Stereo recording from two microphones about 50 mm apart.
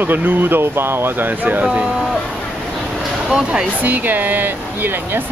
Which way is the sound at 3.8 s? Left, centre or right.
Right.